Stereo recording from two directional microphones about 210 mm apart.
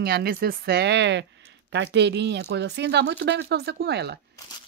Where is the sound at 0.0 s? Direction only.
50° right (ahead or behind).